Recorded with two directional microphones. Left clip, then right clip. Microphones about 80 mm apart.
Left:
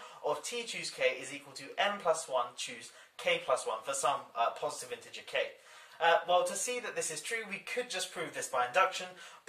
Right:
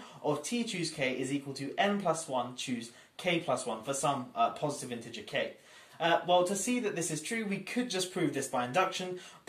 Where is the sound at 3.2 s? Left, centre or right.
Right.